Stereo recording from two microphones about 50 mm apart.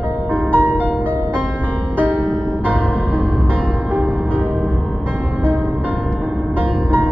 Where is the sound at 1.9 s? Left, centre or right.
Right.